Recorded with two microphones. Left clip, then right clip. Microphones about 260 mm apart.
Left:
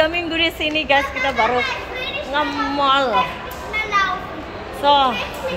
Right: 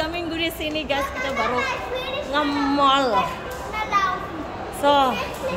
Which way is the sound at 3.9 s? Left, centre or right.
Right.